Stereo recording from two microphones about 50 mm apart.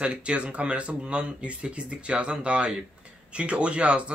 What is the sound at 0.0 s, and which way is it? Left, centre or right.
Speech, right.